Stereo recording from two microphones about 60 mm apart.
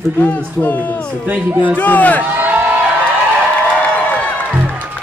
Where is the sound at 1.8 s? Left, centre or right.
Left.